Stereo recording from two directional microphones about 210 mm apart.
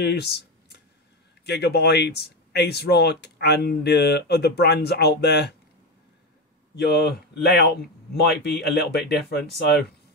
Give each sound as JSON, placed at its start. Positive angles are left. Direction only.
{"t": 0.0, "sound": "a sound", "side_deg": 50}
{"t": 1.4, "sound": "speech", "side_deg": 50}
{"t": 6.7, "sound": "speech", "side_deg": 50}